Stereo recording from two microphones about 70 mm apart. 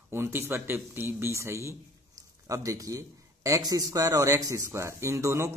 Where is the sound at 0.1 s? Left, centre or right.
Right.